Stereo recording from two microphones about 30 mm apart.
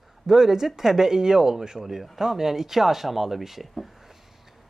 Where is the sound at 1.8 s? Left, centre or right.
Centre.